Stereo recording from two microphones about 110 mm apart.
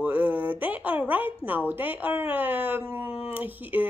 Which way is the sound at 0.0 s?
15° right (ahead or behind).